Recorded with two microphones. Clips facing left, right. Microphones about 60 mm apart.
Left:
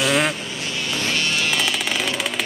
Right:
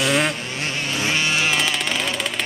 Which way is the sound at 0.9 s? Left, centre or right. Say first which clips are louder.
Right 2 dB; centre.